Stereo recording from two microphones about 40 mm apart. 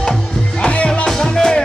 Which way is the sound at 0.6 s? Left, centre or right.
Left.